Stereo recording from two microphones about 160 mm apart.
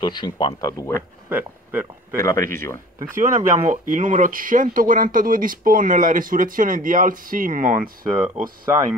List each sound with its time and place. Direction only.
0.0 s speech: 30° left (ahead or behind)
1.3 s speech: 10° right (ahead or behind)
2.1 s speech: 20° left (ahead or behind)
3.2 s speech: 55° right (ahead or behind)